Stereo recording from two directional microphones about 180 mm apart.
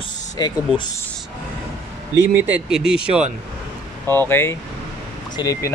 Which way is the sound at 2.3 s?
10° right (ahead or behind).